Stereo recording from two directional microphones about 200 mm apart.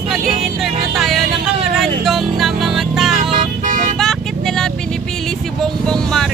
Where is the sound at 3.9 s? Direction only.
5° left (ahead or behind).